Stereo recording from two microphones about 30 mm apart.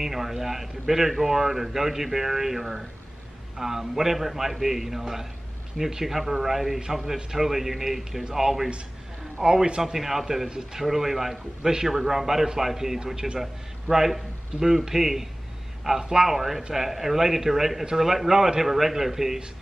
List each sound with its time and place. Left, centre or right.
0.0 s a man's voice: centre